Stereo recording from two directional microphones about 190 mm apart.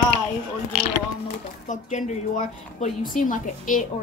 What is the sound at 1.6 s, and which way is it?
A woman's voice, 40° left (ahead or behind).